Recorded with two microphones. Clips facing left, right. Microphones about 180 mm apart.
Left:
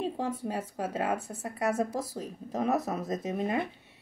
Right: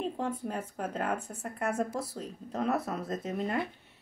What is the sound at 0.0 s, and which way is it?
Speech, 10° left (ahead or behind).